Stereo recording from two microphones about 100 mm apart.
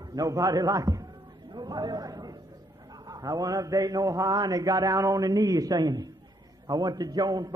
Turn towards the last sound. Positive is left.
turn(degrees=-45)  # may be behind; listen again after turning